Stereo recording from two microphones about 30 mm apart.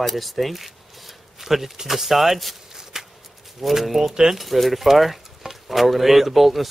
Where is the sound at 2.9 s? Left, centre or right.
Centre.